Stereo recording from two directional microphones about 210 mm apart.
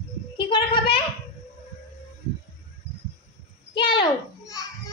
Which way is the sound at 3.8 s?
25° left (ahead or behind).